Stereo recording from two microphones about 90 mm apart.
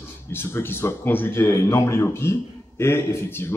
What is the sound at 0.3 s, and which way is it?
Speech, 25° left (ahead or behind).